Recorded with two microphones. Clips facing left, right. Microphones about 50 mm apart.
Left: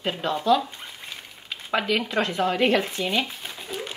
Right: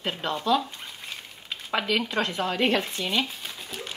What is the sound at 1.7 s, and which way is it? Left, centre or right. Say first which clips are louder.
Speech: left 2 dB; left.